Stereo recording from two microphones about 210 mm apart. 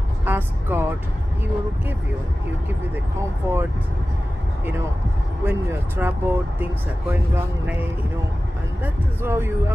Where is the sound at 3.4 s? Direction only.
10° right (ahead or behind).